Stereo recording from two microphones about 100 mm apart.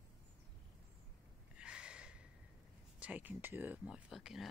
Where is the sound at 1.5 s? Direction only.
10° right (ahead or behind).